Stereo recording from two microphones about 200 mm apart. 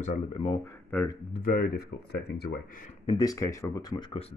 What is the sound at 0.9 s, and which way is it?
Speech, 10° left (ahead or behind).